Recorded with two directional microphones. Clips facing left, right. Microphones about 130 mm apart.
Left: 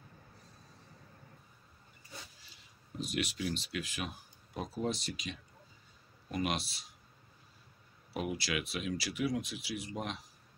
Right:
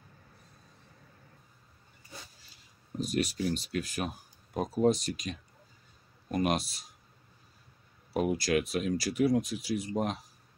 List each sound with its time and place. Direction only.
3.0 s speech: 40° right (ahead or behind)
8.1 s speech: 45° right (ahead or behind)